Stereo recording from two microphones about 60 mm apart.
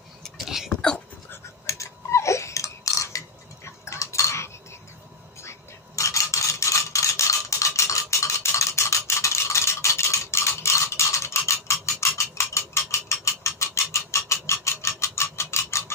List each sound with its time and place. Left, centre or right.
0.2 s a sound: centre
0.7 s dog: centre
1.7 s burping: left
5.4 s rub: left